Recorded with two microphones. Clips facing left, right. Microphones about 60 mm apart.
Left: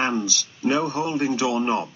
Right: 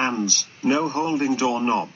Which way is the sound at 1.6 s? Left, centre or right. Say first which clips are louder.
Right 1 dB; centre.